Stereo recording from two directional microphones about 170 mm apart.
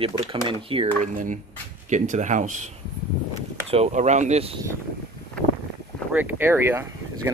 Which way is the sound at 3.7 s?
40° right (ahead or behind).